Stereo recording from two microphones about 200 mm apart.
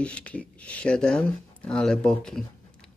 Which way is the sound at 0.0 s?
5° left (ahead or behind).